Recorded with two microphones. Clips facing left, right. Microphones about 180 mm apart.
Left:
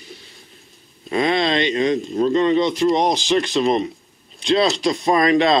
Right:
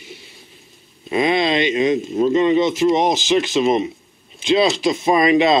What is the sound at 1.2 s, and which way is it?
Speech, 5° right (ahead or behind).